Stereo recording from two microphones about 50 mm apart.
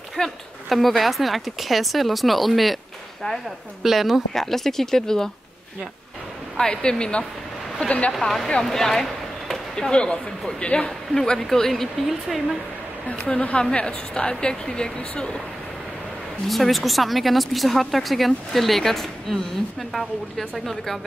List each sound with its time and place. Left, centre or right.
0.1 s speech: centre
3.8 s speech: centre
4.3 s a woman's voice: centre
6.5 s speech: centre
8.2 s a woman's voice: centre
10.9 s a woman's voice: centre
13.4 s speech: left
13.7 s a woman's voice: centre
16.4 s speech: centre